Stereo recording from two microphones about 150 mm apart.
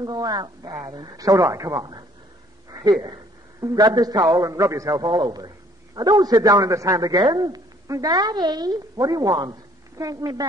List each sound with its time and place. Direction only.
0.0 s a woman's voice: 25° right (ahead or behind)